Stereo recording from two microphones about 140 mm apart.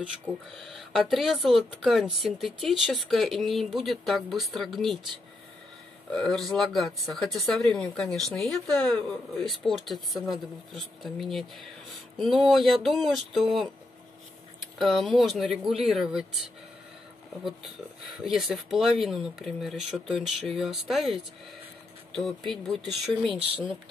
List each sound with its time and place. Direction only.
0.6 s speech: centre (ahead or behind)
6.1 s speech: 5° left (ahead or behind)
14.8 s speech: centre (ahead or behind)
17.5 s speech: centre (ahead or behind)
23.2 s speech: 40° right (ahead or behind)